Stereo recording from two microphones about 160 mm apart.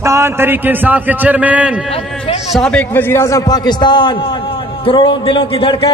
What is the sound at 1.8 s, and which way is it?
Speech, 35° left (ahead or behind).